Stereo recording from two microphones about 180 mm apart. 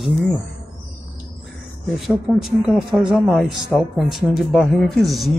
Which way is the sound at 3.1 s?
Centre (ahead or behind).